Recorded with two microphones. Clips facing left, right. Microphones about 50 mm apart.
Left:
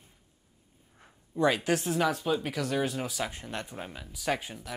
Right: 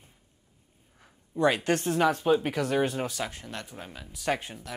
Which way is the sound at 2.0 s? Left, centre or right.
Centre.